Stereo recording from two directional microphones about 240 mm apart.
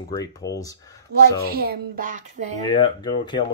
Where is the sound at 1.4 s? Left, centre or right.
Right.